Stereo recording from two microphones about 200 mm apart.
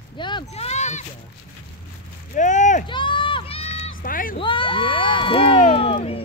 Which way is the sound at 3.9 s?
45° left (ahead or behind).